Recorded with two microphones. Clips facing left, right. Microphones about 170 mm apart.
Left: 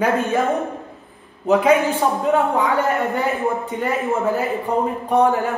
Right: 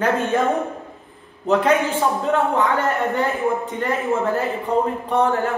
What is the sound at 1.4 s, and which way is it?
A man's voice, 10° left (ahead or behind).